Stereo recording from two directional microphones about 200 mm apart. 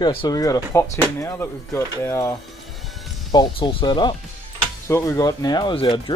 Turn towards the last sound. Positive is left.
turn(degrees=25)  # may be behind; listen again after turning